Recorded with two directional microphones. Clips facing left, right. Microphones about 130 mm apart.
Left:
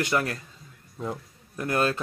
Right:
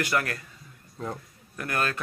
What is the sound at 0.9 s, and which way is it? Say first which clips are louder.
Speech: left 2 dB; 5° left (ahead or behind).